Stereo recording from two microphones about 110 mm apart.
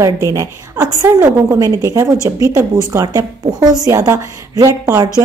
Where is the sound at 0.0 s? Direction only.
30° right (ahead or behind).